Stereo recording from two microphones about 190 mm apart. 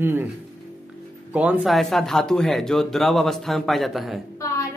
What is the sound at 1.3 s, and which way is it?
A man's voice, 5° right (ahead or behind).